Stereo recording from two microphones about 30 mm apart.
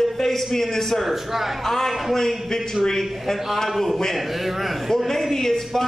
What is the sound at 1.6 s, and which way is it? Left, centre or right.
A man's voice, centre.